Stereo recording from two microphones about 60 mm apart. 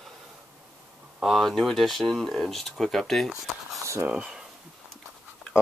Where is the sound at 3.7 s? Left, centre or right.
Right.